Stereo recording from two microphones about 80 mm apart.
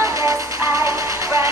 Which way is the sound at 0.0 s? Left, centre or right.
Right.